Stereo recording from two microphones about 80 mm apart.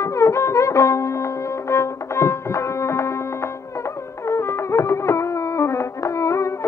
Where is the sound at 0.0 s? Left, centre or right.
Left.